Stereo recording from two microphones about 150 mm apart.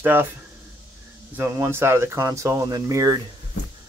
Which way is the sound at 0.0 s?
15° right (ahead or behind).